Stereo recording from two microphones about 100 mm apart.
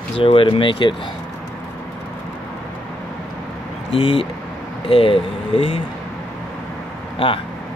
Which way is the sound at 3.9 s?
65° left (ahead or behind).